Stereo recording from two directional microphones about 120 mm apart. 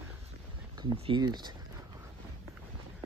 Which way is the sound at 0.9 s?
55° right (ahead or behind).